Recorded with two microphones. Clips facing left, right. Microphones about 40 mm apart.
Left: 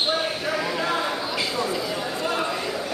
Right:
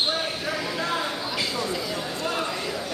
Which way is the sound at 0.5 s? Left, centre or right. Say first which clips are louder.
Left 3 dB; centre.